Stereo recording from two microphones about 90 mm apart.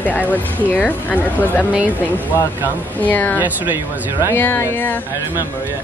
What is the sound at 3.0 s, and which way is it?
Speech, 20° left (ahead or behind).